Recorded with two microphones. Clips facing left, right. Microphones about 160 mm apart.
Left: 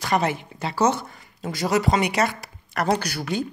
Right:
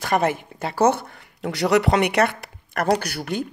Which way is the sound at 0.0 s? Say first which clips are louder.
Right 2 dB; 50° right (ahead or behind).